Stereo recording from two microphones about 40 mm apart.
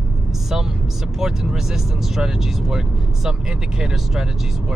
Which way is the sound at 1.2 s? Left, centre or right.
Centre.